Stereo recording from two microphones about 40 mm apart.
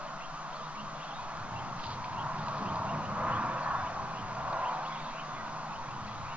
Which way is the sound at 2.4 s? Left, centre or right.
Right.